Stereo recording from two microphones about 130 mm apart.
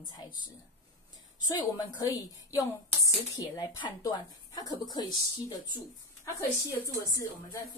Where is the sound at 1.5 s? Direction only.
30° left (ahead or behind).